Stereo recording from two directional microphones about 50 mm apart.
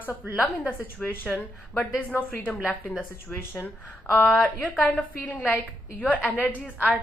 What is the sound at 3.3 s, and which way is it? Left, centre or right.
Speech, left.